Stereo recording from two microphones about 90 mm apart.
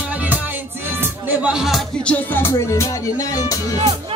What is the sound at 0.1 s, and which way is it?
Music, 20° right (ahead or behind).